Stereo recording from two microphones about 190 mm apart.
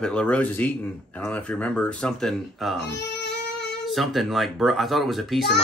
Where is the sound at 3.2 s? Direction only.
65° left (ahead or behind).